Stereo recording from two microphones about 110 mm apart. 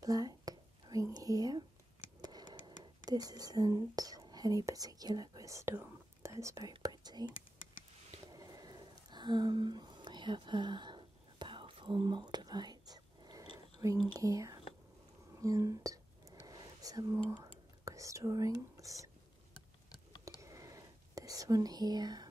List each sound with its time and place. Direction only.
0.0 s whispering: 35° right (ahead or behind)
2.2 s tick-tock: 40° right (ahead or behind)
2.8 s speech: 35° right (ahead or behind)
6.8 s whispering: 40° right (ahead or behind)
8.3 s a sound: 35° right (ahead or behind)
13.8 s speech: 30° right (ahead or behind)
15.3 s whispering: 30° right (ahead or behind)
17.4 s whispering: 30° right (ahead or behind)
19.9 s a sound: 35° left (ahead or behind)
20.3 s whispering: 30° right (ahead or behind)